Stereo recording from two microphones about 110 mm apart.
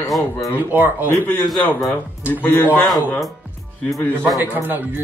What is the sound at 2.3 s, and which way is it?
Speech, 20° left (ahead or behind).